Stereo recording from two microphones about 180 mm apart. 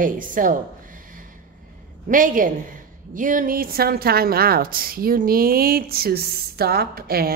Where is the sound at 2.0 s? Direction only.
50° right (ahead or behind).